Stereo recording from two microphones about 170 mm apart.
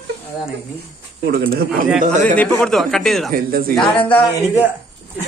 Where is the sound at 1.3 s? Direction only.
65° right (ahead or behind).